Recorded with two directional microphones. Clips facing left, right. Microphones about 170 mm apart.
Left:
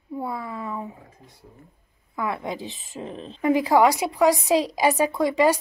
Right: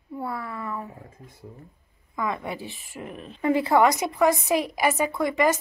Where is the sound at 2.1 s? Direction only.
10° left (ahead or behind); by 3.4 s 25° left (ahead or behind).